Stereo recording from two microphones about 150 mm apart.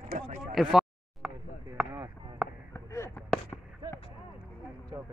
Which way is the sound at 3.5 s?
10° left (ahead or behind).